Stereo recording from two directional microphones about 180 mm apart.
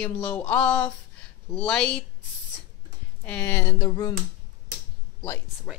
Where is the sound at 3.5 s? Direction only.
20° left (ahead or behind).